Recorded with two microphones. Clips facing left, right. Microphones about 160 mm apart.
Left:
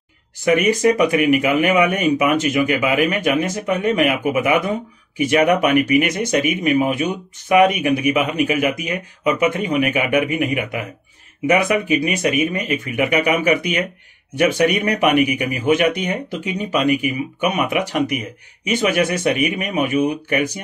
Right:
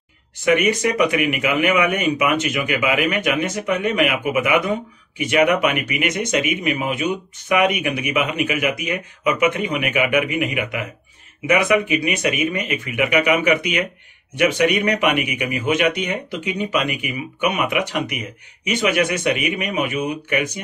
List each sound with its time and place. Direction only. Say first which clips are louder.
0.6 s speech: left 3 dB; 35° left (ahead or behind)